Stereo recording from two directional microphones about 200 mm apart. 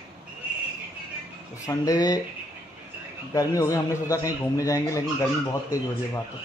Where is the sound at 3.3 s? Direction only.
15° left (ahead or behind).